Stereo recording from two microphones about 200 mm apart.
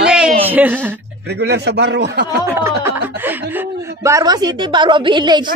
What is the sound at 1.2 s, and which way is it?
A man's voice, 55° right (ahead or behind).